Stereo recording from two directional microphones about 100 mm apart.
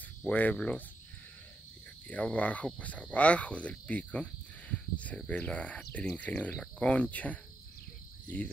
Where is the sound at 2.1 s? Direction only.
15° left (ahead or behind).